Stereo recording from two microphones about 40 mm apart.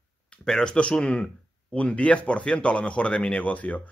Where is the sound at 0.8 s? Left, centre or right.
Left.